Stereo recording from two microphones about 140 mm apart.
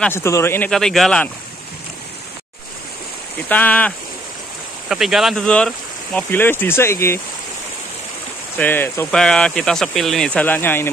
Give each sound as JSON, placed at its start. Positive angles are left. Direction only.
{"t": 0.1, "sound": "speech", "side_deg": 20}
{"t": 0.7, "sound": "speech", "side_deg": 5}
{"t": 3.4, "sound": "speech", "side_deg": 10}
{"t": 4.8, "sound": "speech", "side_deg": -5}
{"t": 8.5, "sound": "speech", "side_deg": 15}